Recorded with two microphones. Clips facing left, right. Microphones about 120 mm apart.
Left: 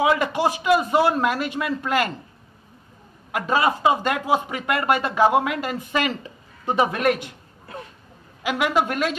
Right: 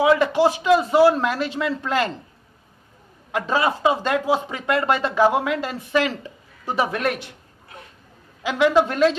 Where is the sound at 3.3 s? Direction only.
15° left (ahead or behind).